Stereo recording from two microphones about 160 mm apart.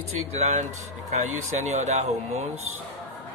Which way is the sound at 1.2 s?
45° right (ahead or behind).